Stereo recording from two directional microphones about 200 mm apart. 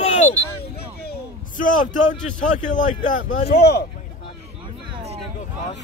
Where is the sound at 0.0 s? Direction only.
35° left (ahead or behind).